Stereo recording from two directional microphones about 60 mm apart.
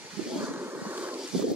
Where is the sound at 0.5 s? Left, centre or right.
Right.